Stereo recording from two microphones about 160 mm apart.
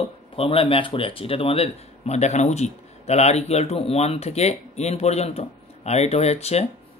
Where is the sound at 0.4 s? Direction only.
35° left (ahead or behind).